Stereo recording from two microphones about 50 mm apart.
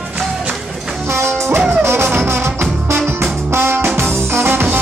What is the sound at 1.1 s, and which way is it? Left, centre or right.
Music, right.